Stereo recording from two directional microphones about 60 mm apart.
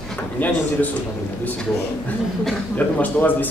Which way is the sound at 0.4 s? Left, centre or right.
Left.